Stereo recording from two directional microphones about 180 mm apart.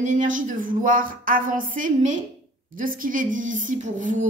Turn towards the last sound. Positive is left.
turn(degrees=-45)  # may be behind; listen again after turning